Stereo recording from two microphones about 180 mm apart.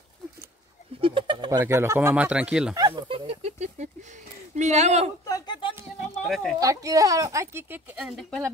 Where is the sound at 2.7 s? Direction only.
20° right (ahead or behind); by 5.1 s 40° right (ahead or behind).